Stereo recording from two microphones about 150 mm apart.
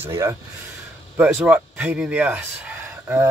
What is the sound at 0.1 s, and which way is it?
Speech, 20° right (ahead or behind).